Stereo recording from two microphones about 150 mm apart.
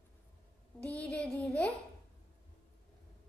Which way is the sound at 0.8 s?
10° left (ahead or behind).